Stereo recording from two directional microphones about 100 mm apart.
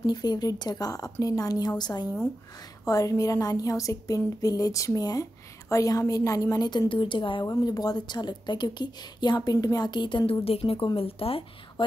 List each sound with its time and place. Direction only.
0.0 s speech: 45° left (ahead or behind)
6.9 s speech: 55° left (ahead or behind)
7.4 s speech: 40° left (ahead or behind); by 11.4 s 70° left (ahead or behind)